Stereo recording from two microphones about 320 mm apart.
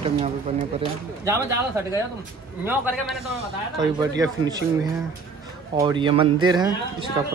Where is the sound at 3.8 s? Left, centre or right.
Centre.